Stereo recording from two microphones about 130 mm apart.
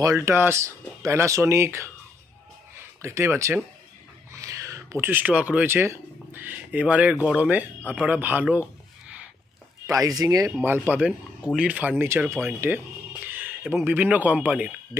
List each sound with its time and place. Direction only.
0.0 s speech: 20° right (ahead or behind)
3.0 s speech: 20° right (ahead or behind)
9.8 s speech: 25° right (ahead or behind)
10.6 s speech: 15° right (ahead or behind)